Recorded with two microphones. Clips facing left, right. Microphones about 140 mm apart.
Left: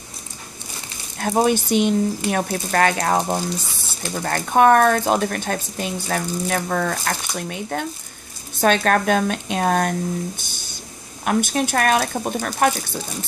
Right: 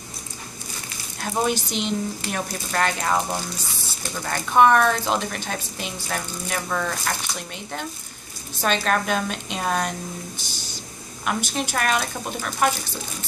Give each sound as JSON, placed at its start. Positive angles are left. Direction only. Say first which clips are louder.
{"t": 1.4, "sound": "speech", "louder": "left 7 dB", "side_deg": 55}
{"t": 4.1, "sound": "speech", "louder": "left 3 dB", "side_deg": 45}